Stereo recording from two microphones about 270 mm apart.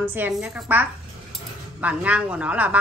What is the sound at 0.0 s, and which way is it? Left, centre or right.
A woman's voice, centre.